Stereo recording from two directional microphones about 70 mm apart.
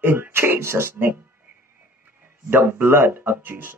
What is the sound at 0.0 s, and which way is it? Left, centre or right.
Speech, right.